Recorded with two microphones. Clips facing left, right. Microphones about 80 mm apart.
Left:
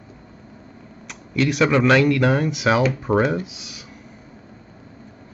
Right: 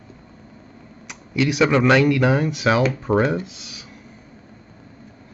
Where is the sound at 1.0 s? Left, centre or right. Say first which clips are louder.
Even; centre.